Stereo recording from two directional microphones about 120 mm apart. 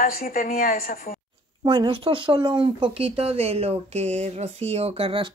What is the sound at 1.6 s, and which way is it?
Speech, 40° right (ahead or behind).